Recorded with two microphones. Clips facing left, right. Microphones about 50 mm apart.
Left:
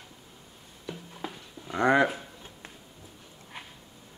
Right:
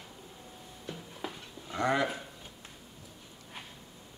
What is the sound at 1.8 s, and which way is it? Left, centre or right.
Speech, left.